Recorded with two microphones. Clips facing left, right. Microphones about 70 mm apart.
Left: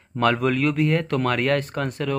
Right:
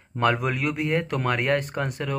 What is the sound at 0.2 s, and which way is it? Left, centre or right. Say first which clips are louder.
Speech: left 3 dB; centre.